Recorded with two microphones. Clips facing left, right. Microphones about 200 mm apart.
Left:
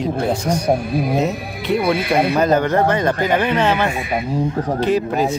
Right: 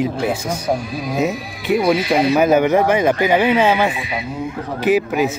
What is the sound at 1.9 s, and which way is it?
Speech, 55° left (ahead or behind).